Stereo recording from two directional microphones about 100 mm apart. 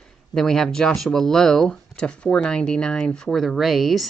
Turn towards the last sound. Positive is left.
turn(degrees=0)  # may be behind; listen again after turning